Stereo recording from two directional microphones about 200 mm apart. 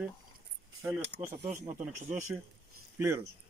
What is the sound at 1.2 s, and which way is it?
Speech, 35° right (ahead or behind).